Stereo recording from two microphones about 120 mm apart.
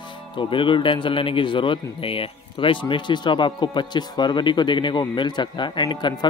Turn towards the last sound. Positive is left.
turn(degrees=40)  # may be behind; listen again after turning